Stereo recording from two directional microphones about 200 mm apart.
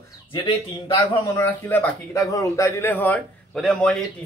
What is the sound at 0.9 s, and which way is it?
A man's voice, 15° left (ahead or behind).